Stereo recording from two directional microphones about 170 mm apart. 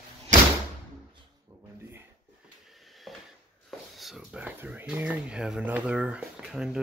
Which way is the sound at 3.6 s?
Centre (ahead or behind).